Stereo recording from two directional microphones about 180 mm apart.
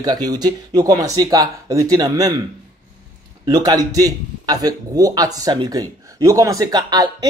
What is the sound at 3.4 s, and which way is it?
Speech, 20° right (ahead or behind).